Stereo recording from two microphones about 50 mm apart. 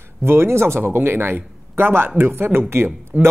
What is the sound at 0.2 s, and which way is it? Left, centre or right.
A man's voice, right.